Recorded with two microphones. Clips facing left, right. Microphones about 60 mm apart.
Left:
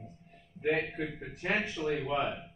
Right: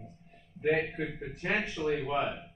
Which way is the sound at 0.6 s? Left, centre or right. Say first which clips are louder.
Right 2 dB; right.